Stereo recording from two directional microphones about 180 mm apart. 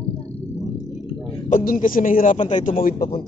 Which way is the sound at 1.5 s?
50° left (ahead or behind).